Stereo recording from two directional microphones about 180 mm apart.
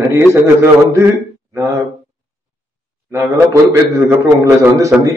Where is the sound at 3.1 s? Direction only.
15° right (ahead or behind).